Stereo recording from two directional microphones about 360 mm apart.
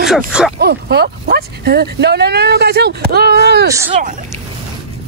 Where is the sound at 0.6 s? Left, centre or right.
Right.